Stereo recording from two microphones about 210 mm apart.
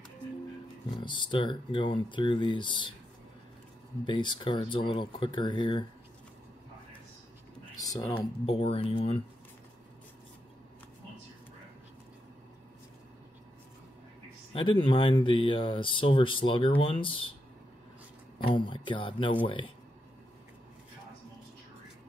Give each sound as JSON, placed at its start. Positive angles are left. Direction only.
{"t": 1.0, "sound": "speech", "side_deg": 20}
{"t": 4.0, "sound": "speech", "side_deg": 20}
{"t": 7.7, "sound": "speech", "side_deg": 15}
{"t": 14.5, "sound": "speech", "side_deg": 25}
{"t": 18.4, "sound": "speech", "side_deg": 25}